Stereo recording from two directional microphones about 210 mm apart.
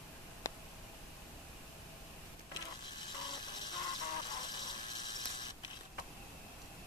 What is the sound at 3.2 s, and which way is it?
Ratchet, 20° left (ahead or behind).